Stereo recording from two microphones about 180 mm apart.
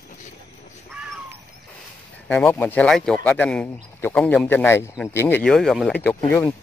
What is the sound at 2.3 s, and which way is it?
Speech, 10° left (ahead or behind).